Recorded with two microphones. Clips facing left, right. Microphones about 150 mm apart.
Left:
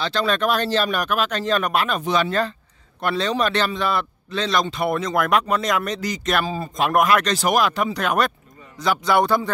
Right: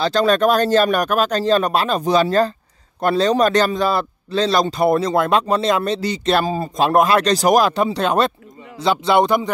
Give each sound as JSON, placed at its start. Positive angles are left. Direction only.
{"t": 0.0, "sound": "a man's voice", "side_deg": -40}